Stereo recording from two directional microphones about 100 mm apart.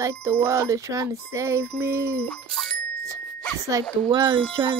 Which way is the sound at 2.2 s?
5° left (ahead or behind).